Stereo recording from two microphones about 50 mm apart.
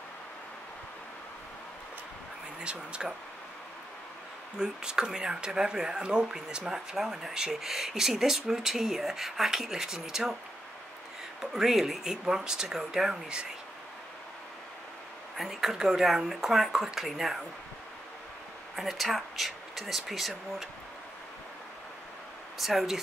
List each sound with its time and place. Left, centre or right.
2.6 s speech: right
4.6 s speech: centre
11.5 s speech: centre
15.3 s speech: centre
18.8 s speech: centre
22.6 s speech: centre